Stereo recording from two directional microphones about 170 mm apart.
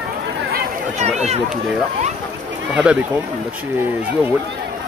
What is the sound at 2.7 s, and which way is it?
Speech, 10° right (ahead or behind).